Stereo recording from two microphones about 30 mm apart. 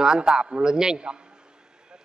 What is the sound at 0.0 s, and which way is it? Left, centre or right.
A man's voice, right.